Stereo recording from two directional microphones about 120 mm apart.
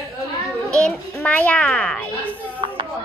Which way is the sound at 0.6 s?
5° left (ahead or behind).